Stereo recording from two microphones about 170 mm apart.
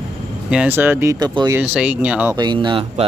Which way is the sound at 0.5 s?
10° right (ahead or behind).